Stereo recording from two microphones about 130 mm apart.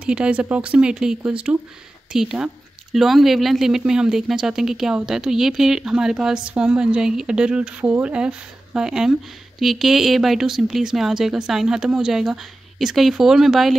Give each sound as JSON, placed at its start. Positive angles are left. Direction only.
{"t": 0.0, "sound": "speech", "side_deg": -10}